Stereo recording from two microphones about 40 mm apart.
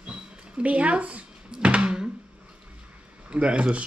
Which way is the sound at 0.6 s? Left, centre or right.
Right.